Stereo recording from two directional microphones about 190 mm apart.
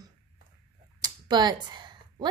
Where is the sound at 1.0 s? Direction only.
20° right (ahead or behind).